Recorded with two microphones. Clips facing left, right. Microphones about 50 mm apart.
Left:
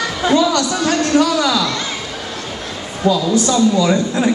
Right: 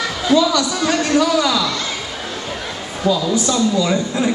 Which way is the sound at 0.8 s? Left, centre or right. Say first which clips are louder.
Left 2 dB; centre.